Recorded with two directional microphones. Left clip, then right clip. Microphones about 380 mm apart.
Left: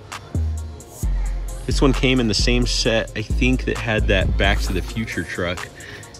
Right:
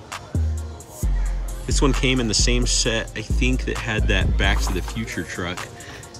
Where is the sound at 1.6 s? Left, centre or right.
Centre.